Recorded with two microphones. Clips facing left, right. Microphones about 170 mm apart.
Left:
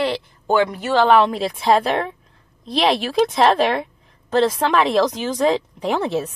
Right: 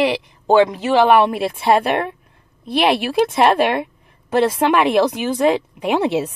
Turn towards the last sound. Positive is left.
turn(degrees=-10)  # may be behind; listen again after turning